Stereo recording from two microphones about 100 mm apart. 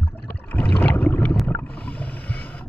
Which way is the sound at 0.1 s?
15° left (ahead or behind).